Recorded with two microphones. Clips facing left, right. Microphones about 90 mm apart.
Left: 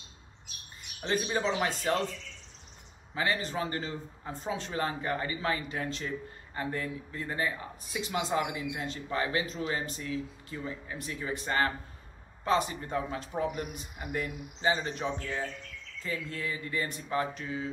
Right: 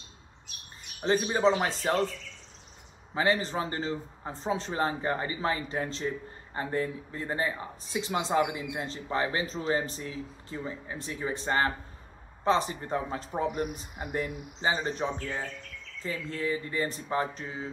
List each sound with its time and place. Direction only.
1.0 s speech: 35° right (ahead or behind)
3.4 s speech: 30° right (ahead or behind)